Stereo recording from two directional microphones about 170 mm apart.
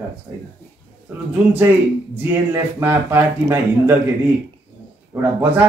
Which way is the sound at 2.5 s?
15° right (ahead or behind).